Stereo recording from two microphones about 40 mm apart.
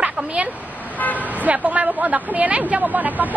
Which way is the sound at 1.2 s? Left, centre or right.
Right.